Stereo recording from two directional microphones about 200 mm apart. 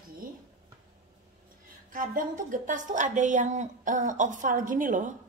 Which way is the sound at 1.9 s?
40° right (ahead or behind).